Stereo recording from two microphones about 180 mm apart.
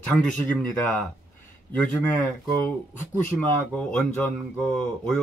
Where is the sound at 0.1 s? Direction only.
10° left (ahead or behind).